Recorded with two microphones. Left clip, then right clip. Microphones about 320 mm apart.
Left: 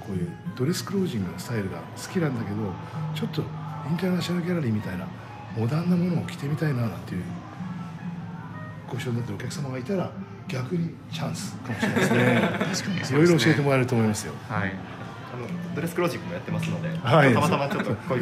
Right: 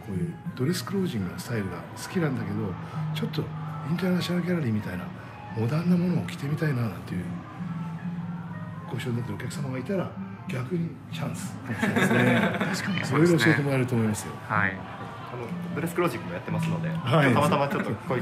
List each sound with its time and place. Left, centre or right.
0.6 s speech: centre
9.7 s speech: centre
11.8 s speech: centre
16.0 s speech: centre
17.0 s speech: left
17.3 s speech: centre